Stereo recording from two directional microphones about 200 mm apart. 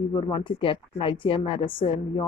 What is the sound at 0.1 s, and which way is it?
A woman's voice, 25° left (ahead or behind).